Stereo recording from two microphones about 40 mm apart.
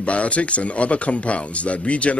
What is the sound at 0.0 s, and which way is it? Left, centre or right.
Speech, left.